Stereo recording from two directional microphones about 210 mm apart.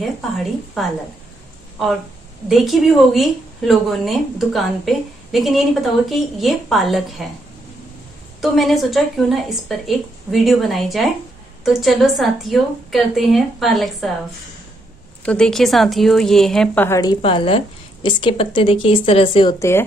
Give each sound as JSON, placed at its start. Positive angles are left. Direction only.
{"t": 2.4, "sound": "speech", "side_deg": 0}
{"t": 8.4, "sound": "speech", "side_deg": 0}
{"t": 15.2, "sound": "a woman's voice", "side_deg": 5}